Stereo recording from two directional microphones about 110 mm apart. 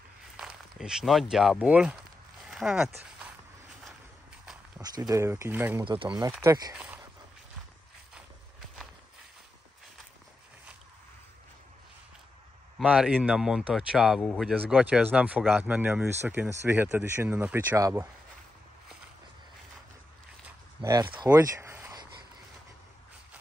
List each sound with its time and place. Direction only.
0.4 s speech: 5° right (ahead or behind)
2.4 s a sound: centre (ahead or behind)
4.8 s speech: 35° right (ahead or behind)
5.3 s speech: 20° right (ahead or behind)
5.9 s speech: 45° right (ahead or behind)
12.8 s speech: 10° right (ahead or behind)
17.7 s speech: 30° right (ahead or behind)
21.0 s speech: 45° right (ahead or behind)
21.4 s a sound: 25° right (ahead or behind)